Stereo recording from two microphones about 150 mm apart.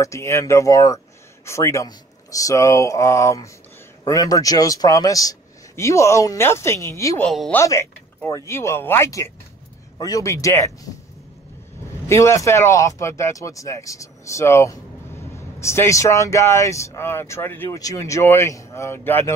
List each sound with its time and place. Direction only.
0.0 s speech: 20° left (ahead or behind)
7.2 s speech: 5° left (ahead or behind)
7.5 s speech: 20° left (ahead or behind)
12.1 s speech: 20° left (ahead or behind)